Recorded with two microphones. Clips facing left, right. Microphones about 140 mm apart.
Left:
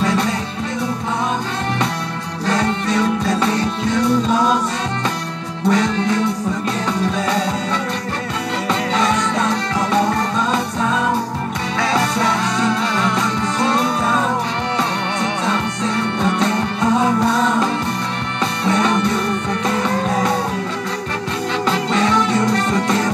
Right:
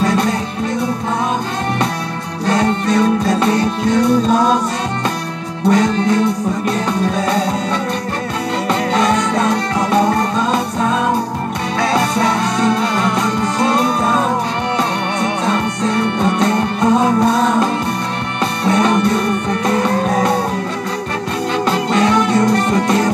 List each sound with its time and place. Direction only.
0.0 s music: 45° right (ahead or behind)
2.4 s music: 45° right (ahead or behind)
5.7 s music: 45° right (ahead or behind)
8.6 s music: 45° right (ahead or behind)
15.4 s music: 45° right (ahead or behind)
18.7 s music: 45° right (ahead or behind)
21.6 s music: 45° right (ahead or behind)